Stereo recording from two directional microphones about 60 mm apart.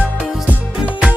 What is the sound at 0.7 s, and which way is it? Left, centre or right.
Music, centre.